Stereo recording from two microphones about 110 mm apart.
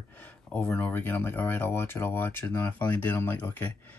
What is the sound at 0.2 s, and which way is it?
Speech, 15° left (ahead or behind).